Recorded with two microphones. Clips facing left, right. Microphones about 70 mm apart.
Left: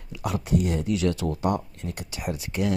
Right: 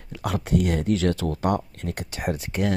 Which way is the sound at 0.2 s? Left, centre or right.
Right.